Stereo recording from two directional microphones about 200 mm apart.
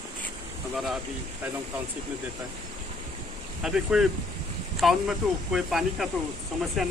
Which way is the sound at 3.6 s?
5° right (ahead or behind).